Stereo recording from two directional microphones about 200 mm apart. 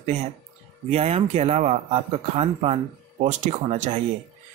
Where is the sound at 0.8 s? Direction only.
30° right (ahead or behind).